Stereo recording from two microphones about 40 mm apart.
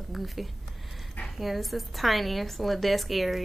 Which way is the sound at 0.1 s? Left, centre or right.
Centre.